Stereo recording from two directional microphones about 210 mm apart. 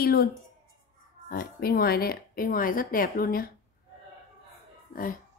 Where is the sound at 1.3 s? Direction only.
45° left (ahead or behind).